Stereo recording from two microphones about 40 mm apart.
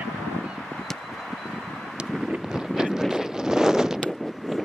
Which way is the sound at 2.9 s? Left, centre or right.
Centre.